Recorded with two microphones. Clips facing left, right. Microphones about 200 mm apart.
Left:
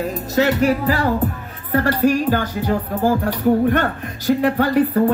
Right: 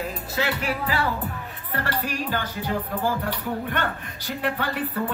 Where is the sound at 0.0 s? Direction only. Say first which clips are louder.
Left 9 dB; 40° left (ahead or behind).